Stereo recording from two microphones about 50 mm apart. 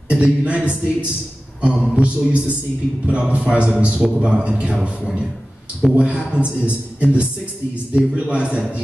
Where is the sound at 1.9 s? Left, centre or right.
Right.